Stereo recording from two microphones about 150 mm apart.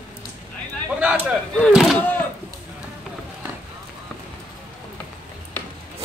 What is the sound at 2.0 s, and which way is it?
Speech, 10° left (ahead or behind).